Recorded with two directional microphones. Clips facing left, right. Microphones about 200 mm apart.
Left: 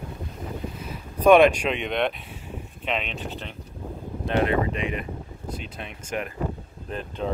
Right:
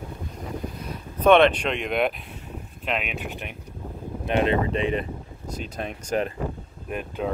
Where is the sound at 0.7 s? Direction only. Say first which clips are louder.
Even; 5° left (ahead or behind); by 6.3 s 35° right (ahead or behind).